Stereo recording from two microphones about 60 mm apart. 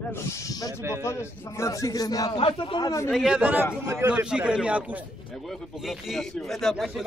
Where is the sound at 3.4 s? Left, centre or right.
Right.